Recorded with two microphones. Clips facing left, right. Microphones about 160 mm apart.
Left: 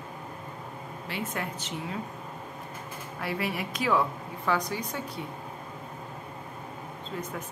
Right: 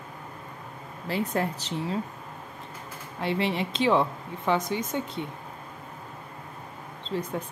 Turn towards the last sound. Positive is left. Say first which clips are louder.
# right 5 dB
turn(degrees=-30)  # may be behind; listen again after turning